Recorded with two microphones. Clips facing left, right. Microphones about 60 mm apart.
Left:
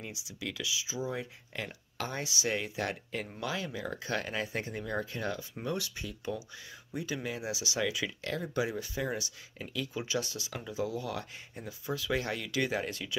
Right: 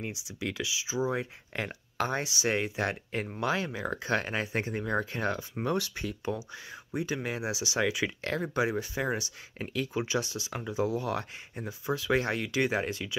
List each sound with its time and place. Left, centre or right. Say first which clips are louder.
0.0 s speech: right 5 dB; right
6.2 s speech: right 3 dB; right
8.2 s speech: right 2 dB; right
9.6 s speech: right 5 dB; right
9.9 s speech: right 3 dB; right